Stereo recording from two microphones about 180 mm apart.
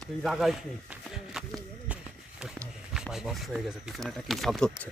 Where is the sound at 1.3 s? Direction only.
Centre (ahead or behind).